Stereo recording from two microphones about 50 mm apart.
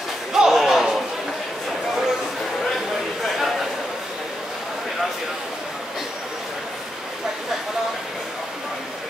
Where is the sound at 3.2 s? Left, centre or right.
Centre.